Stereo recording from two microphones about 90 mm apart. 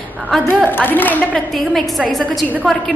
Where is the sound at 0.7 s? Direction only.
20° left (ahead or behind).